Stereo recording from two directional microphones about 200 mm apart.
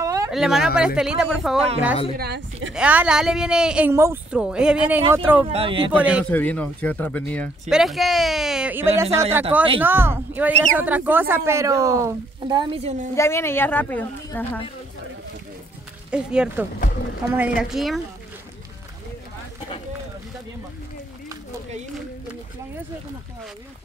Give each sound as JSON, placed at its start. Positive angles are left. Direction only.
{"t": 0.0, "sound": "a sound", "side_deg": -15}
{"t": 0.3, "sound": "speech", "side_deg": 0}
{"t": 2.1, "sound": "a woman's voice", "side_deg": -55}
{"t": 2.7, "sound": "a woman's voice", "side_deg": -5}
{"t": 5.5, "sound": "speech", "side_deg": -25}
{"t": 5.9, "sound": "a woman's voice", "side_deg": -5}
{"t": 6.3, "sound": "a woman's voice", "side_deg": 10}
{"t": 13.1, "sound": "speech", "side_deg": 15}
{"t": 16.1, "sound": "speech", "side_deg": -5}